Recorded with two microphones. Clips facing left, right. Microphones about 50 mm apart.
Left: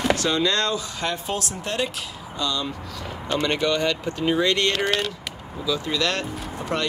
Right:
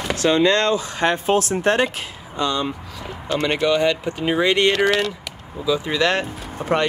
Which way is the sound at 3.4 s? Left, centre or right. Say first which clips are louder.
Right 5 dB; centre.